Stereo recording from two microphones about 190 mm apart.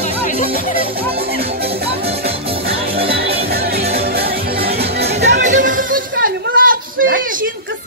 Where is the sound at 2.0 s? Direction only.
30° right (ahead or behind).